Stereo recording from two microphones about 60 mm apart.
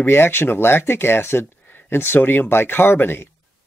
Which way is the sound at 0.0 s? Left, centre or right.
Left.